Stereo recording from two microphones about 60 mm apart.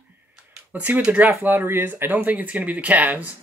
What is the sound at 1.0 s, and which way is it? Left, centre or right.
Speech, right.